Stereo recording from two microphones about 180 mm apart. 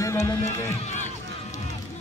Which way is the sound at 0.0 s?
20° left (ahead or behind).